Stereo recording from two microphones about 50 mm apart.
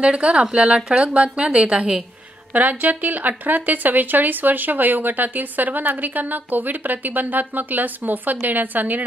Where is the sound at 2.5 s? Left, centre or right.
Right.